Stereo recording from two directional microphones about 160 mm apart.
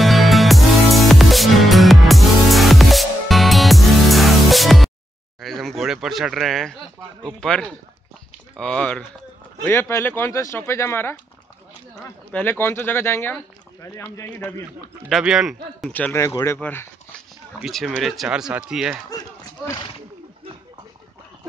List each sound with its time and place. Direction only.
0.0 s music: centre (ahead or behind)
5.4 s a sound: centre (ahead or behind)
7.3 s speech: 5° left (ahead or behind)
15.0 s speech: centre (ahead or behind)
15.9 s speech: 10° left (ahead or behind)
17.6 s speech: centre (ahead or behind)